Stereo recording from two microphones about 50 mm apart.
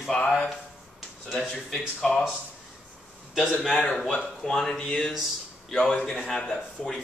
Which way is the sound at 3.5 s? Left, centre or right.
Centre.